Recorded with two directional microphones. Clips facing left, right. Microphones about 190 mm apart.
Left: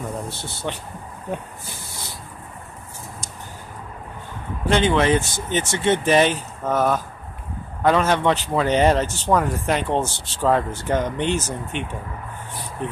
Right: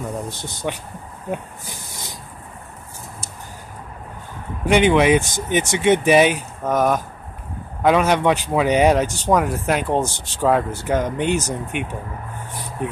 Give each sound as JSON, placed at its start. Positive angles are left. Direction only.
{"t": 0.3, "sound": "speech", "side_deg": -15}
{"t": 4.6, "sound": "speech", "side_deg": -15}